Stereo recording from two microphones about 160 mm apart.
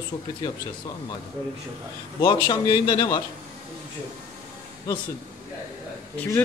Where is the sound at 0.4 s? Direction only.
25° left (ahead or behind).